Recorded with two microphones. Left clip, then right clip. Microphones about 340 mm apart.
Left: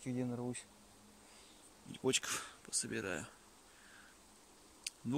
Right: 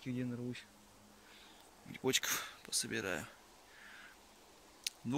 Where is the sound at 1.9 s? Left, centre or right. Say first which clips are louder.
Right 1 dB; centre.